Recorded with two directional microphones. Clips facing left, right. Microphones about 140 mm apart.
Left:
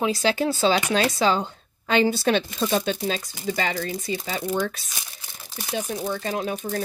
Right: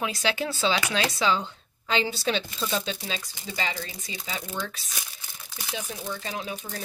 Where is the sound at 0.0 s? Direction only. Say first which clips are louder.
Left 6 dB; 35° left (ahead or behind); by 4.8 s 50° left (ahead or behind).